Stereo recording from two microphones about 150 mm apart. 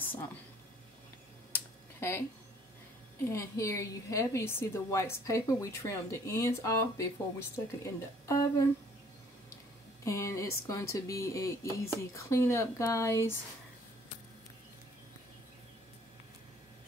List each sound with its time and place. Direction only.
0.0 s a sound: 15° left (ahead or behind)
1.5 s computer keyboard: 15° left (ahead or behind)
3.3 s a woman's voice: 20° left (ahead or behind)
10.0 s a woman's voice: 20° left (ahead or behind)